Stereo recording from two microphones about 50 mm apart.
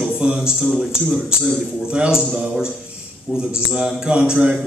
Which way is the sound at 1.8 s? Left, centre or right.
Centre.